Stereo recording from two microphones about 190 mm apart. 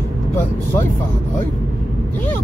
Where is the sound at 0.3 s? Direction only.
10° left (ahead or behind).